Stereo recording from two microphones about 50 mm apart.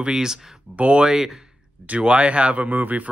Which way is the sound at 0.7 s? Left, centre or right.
Right.